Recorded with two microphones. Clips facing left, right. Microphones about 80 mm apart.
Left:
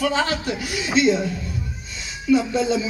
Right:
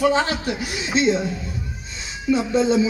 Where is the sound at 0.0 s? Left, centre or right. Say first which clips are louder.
Right 3 dB; right.